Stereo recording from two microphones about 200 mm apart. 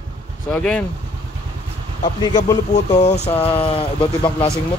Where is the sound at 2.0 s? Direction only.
20° left (ahead or behind).